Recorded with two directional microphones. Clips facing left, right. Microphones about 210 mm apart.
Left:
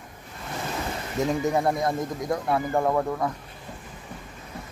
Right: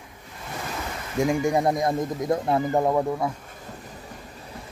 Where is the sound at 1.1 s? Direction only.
10° right (ahead or behind).